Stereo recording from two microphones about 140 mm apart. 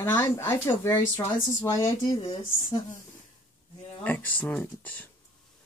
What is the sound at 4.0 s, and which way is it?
Speech, 15° left (ahead or behind).